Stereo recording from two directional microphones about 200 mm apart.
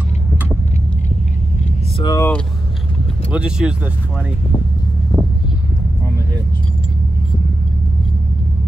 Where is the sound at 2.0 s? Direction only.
20° left (ahead or behind).